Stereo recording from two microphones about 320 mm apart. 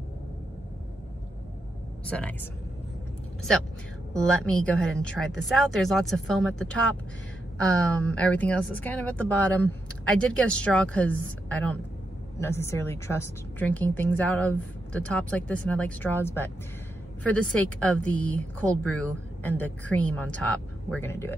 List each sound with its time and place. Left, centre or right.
2.0 s a woman's voice: centre
4.1 s a woman's voice: centre